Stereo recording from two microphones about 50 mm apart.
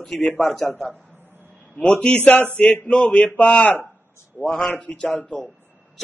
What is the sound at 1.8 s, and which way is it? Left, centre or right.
A man's voice, left.